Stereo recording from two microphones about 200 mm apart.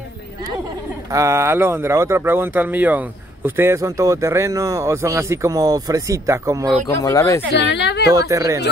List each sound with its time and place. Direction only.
1.1 s speech: 15° right (ahead or behind)
7.0 s speech: 15° left (ahead or behind)
7.5 s a woman's voice: 60° left (ahead or behind)
8.1 s speech: 15° right (ahead or behind)